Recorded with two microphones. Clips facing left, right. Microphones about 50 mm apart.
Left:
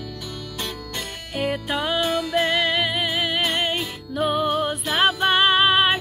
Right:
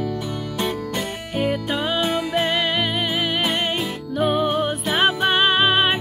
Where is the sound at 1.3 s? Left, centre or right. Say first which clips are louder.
Right 2 dB; centre.